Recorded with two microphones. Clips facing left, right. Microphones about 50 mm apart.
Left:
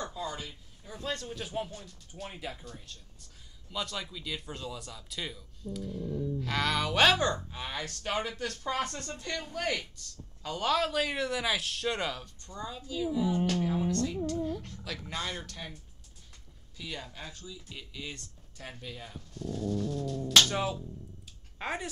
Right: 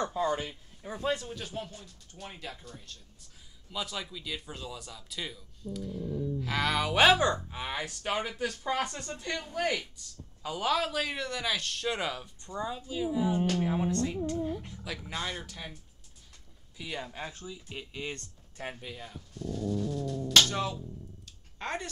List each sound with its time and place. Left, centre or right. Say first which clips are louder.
0.0 s speech: right 7 dB; right
1.1 s speech: even; centre
12.4 s speech: right 5 dB; centre
16.7 s speech: right 3 dB; centre; by 18.8 s right
18.9 s speech: even; centre
19.7 s speech: even; centre
20.4 s speech: left 1 dB; centre
21.3 s a sound: even; centre